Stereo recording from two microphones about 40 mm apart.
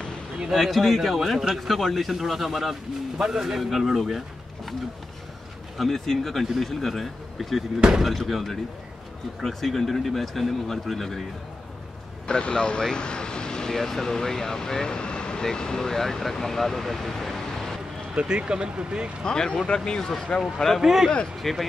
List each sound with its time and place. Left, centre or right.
0.5 s speech: centre
3.2 s a man's voice: centre
5.8 s speech: centre
12.3 s speech: left
18.1 s speech: right
19.2 s speech: centre
20.8 s speech: centre